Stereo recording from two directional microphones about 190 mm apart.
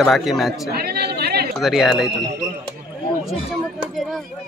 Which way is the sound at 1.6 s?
Centre (ahead or behind).